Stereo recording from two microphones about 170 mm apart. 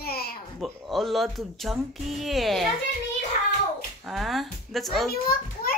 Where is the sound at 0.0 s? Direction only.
65° left (ahead or behind).